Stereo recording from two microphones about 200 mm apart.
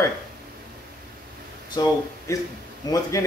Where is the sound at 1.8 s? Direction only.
20° left (ahead or behind).